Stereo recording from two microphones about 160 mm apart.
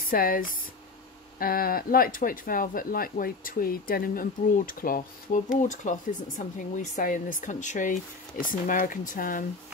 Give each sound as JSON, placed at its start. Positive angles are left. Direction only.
{"t": 0.1, "sound": "speech", "side_deg": 60}